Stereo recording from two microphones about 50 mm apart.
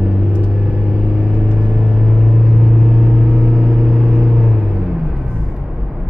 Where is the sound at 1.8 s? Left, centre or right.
Centre.